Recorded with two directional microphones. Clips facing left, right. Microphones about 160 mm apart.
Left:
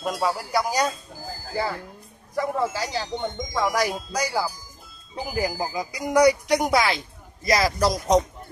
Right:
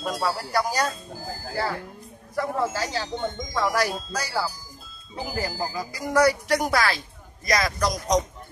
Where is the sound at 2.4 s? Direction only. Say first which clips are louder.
Left 1 dB; 10° left (ahead or behind).